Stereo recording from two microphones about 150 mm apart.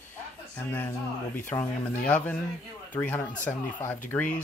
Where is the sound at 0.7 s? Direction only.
10° left (ahead or behind).